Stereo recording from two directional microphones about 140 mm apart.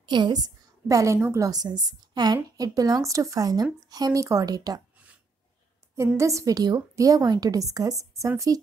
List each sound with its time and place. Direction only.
0.0 s a woman's voice: 30° right (ahead or behind)
6.1 s a woman's voice: 25° right (ahead or behind)